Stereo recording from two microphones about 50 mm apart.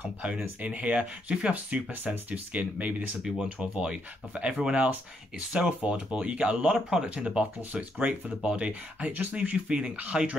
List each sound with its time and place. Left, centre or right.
0.0 s speech: right
2.3 s speech: right
3.4 s speech: right
9.1 s speech: right